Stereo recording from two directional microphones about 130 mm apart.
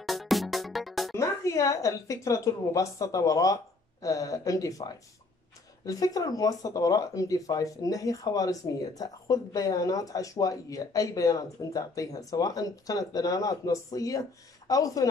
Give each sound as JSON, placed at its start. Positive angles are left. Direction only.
{"t": 0.0, "sound": "music", "side_deg": 0}
{"t": 1.1, "sound": "speech", "side_deg": 25}